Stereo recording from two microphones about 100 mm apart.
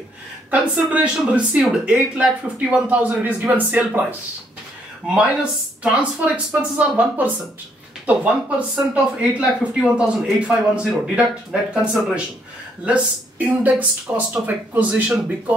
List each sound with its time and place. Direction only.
0.5 s speech: 15° right (ahead or behind)
5.0 s speech: 10° right (ahead or behind)